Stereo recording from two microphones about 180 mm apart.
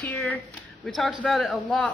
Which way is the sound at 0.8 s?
Centre (ahead or behind).